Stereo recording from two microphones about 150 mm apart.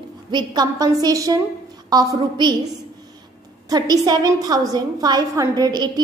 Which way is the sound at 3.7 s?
25° right (ahead or behind).